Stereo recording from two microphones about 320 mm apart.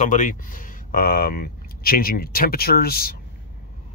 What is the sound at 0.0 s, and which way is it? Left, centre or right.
Speech, left.